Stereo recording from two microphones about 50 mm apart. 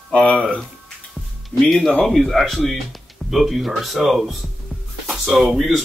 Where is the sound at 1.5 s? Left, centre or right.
Left.